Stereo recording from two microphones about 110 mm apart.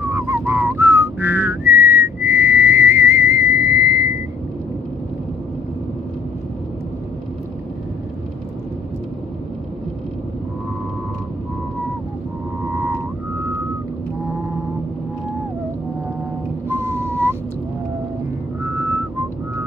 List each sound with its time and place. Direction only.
0.0 s whistling: 25° right (ahead or behind)
12.7 s music: 15° right (ahead or behind)
16.6 s a sound: 20° right (ahead or behind)